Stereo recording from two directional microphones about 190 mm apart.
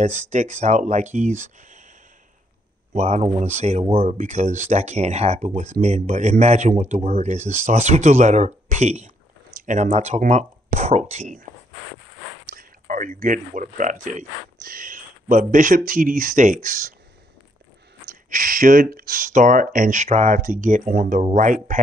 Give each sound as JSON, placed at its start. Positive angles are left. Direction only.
{"t": 0.3, "sound": "speech", "side_deg": -40}
{"t": 1.4, "sound": "a sound", "side_deg": -40}
{"t": 2.9, "sound": "speech", "side_deg": -35}
{"t": 9.6, "sound": "a sound", "side_deg": -40}
{"t": 9.8, "sound": "speech", "side_deg": -35}
{"t": 12.4, "sound": "speech", "side_deg": -45}
{"t": 18.3, "sound": "speech", "side_deg": -45}